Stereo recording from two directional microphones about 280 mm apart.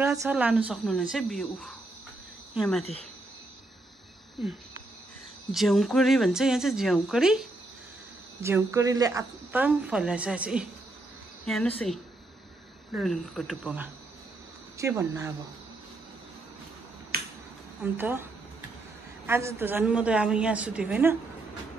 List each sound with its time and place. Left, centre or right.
0.0 s speech: centre
5.5 s speech: centre
17.1 s finger snapping: right
17.9 s speech: centre
19.2 s speech: centre